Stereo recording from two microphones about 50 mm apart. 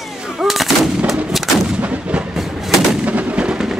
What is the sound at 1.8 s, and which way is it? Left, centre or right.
Artillery fire, right.